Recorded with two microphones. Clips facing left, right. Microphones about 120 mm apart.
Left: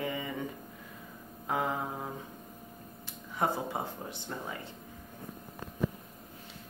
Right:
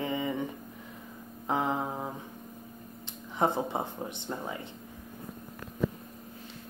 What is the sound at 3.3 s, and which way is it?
Speech, 25° right (ahead or behind).